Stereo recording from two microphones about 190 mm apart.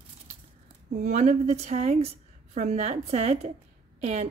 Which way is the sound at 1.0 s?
40° right (ahead or behind).